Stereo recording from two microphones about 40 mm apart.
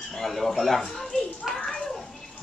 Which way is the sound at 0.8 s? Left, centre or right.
Centre.